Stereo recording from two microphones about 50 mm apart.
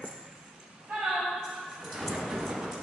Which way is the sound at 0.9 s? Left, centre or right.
Centre.